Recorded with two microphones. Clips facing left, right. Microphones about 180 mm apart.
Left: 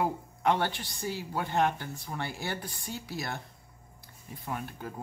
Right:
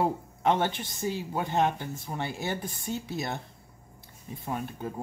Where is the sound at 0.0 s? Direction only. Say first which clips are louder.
Right 2 dB; 20° right (ahead or behind).